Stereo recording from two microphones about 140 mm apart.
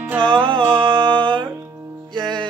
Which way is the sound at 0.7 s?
35° right (ahead or behind).